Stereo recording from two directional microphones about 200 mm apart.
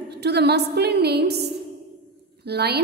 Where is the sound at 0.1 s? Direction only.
55° right (ahead or behind).